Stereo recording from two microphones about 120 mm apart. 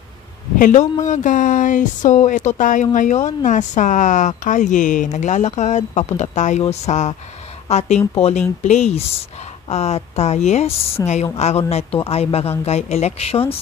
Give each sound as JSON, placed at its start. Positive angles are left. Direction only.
{"t": 0.6, "sound": "speech", "side_deg": 90}
{"t": 11.0, "sound": "a woman's voice", "side_deg": 30}
{"t": 11.3, "sound": "speech", "side_deg": 65}